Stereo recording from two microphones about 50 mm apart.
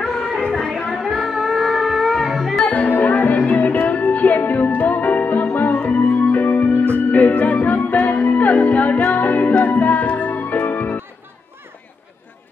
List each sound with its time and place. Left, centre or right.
0.0 s music: centre
2.6 s music: left
5.9 s music: left